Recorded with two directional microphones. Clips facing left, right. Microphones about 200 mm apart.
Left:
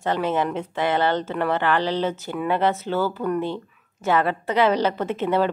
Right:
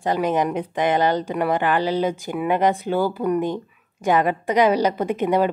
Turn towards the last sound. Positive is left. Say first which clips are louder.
# right 2 dB
turn(degrees=-15)  # may be behind; listen again after turning